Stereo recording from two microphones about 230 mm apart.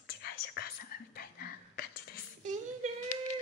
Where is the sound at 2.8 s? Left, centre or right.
Right.